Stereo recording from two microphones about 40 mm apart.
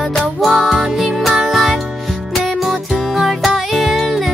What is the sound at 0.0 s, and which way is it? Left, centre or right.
Music, centre.